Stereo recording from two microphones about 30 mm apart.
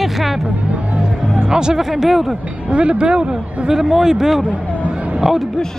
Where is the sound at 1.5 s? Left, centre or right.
Right.